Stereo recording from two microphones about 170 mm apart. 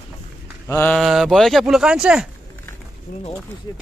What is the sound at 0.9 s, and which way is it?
Speech, centre (ahead or behind).